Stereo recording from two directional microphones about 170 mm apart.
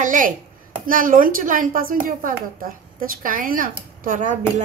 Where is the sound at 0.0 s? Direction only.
50° right (ahead or behind).